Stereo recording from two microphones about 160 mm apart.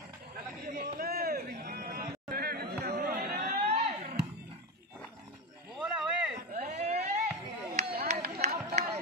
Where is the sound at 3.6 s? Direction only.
40° right (ahead or behind).